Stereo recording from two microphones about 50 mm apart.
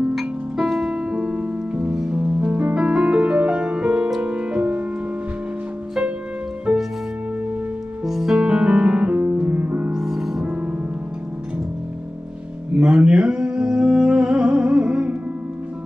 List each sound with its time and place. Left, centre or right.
0.1 s music: centre; by 4.8 s right
6.7 s music: right
8.0 s music: centre; by 9.9 s right
9.9 s music: centre
12.7 s a sound: right